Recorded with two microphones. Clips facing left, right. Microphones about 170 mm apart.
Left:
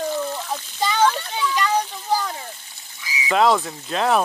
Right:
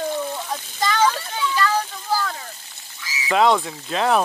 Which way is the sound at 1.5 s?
15° left (ahead or behind).